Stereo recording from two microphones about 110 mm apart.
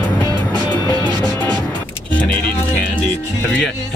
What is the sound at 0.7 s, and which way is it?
Music, 35° right (ahead or behind).